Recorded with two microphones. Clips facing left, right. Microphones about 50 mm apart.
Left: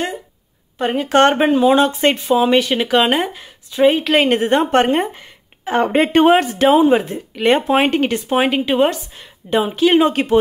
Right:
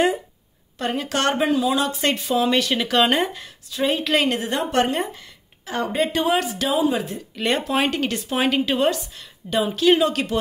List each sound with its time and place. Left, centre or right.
0.7 s speech: left
3.7 s speech: left
4.3 s a woman's voice: left
5.9 s speech: left